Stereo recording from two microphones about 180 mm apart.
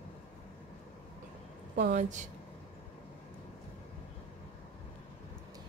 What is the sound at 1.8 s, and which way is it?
Speech, 45° right (ahead or behind).